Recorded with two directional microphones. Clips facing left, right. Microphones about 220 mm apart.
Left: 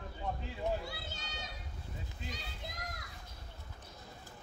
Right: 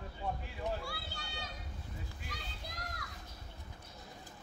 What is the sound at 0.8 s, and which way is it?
Children playing, 20° left (ahead or behind).